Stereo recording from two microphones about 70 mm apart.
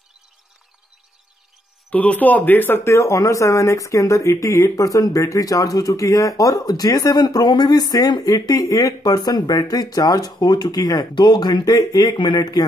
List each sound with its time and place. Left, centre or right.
1.9 s speech: centre; by 8.4 s left
8.4 s speech: left